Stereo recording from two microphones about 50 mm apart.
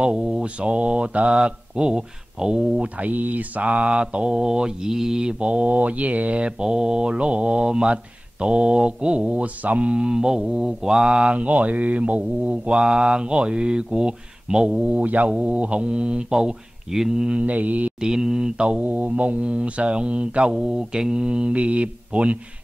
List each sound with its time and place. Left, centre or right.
0.0 s speech: centre
3.0 s speech: right; by 5.3 s centre
5.4 s speech: right; by 17.3 s centre
17.3 s mantra: right
18.0 s speech: centre
18.7 s speech: right